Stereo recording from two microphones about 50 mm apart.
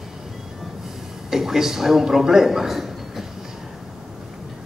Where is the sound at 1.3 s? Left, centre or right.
Centre.